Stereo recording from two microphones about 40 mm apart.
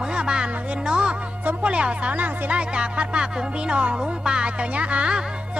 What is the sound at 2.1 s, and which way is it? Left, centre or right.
Music, right.